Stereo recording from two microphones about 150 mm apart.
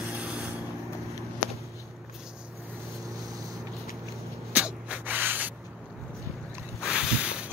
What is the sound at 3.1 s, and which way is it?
Boat, 25° right (ahead or behind).